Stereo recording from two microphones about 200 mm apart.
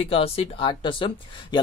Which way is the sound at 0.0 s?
30° left (ahead or behind).